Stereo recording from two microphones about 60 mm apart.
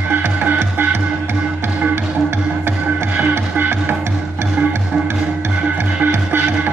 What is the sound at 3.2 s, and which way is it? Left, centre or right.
Music, right.